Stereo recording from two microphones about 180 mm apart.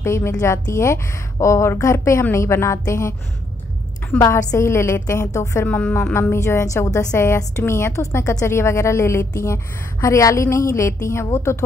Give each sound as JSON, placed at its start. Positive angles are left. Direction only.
{"t": 0.0, "sound": "a woman's voice", "side_deg": 15}